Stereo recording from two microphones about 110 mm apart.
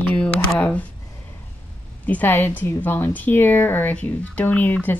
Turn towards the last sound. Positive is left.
turn(degrees=15)  # may be behind; listen again after turning